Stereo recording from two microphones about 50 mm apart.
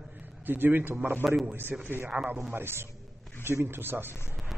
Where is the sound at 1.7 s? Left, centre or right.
Centre.